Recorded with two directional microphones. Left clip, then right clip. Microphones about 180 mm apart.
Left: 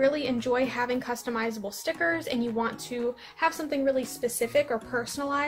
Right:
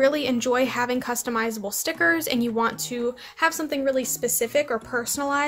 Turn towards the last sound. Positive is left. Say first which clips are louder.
# right 4 dB
turn(degrees=-25)  # may be behind; listen again after turning